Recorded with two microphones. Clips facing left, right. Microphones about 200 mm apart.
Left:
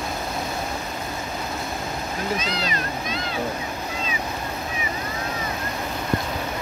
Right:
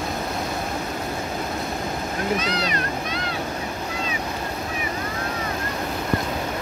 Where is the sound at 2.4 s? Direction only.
70° right (ahead or behind).